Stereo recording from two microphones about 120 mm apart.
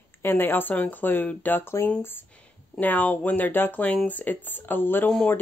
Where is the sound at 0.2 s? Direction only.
15° left (ahead or behind).